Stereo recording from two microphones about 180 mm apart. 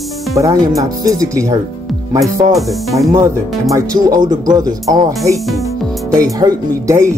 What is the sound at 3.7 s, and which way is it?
Speech, 20° right (ahead or behind).